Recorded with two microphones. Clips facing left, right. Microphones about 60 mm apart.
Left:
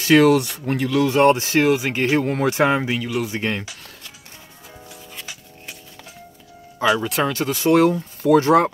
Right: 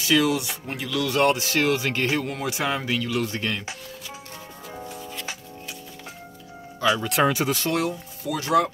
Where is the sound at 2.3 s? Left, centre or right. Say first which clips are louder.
Left 8 dB; left.